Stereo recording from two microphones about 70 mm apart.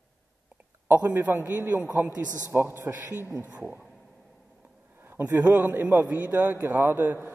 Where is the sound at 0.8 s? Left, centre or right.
Right.